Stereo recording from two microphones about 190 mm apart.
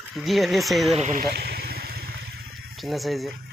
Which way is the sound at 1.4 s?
55° right (ahead or behind).